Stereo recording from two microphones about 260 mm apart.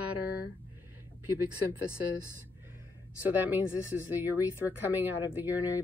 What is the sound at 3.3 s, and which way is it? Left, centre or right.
Speech, centre.